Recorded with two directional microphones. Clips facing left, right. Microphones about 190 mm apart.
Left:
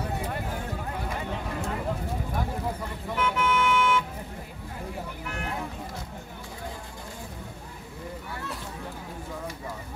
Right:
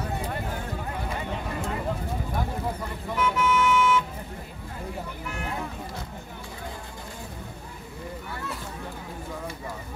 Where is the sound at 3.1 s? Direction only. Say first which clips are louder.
Right 2 dB; 60° left (ahead or behind).